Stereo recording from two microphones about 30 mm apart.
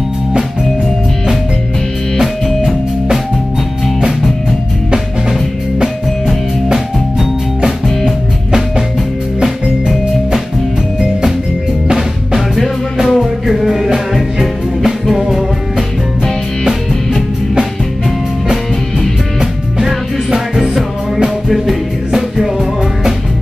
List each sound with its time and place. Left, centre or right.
2.1 s music: centre
6.7 s music: centre
13.1 s music: centre
19.8 s music: centre